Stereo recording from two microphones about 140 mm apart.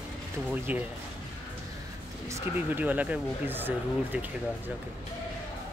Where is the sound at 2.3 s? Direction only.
15° right (ahead or behind).